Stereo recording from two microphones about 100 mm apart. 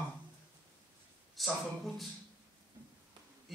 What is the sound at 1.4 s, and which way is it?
Speech, centre (ahead or behind).